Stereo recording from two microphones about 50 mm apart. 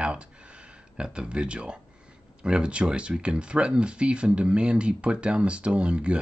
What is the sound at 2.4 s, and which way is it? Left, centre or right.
Speech, centre.